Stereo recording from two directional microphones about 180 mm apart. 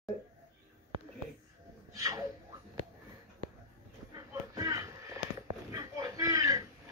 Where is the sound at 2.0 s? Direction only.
20° right (ahead or behind).